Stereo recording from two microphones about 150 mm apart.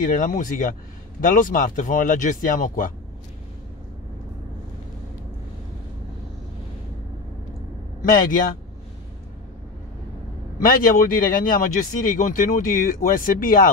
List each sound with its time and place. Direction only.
0.0 s speech: 65° left (ahead or behind)
8.0 s speech: 65° left (ahead or behind)
10.6 s speech: 70° left (ahead or behind)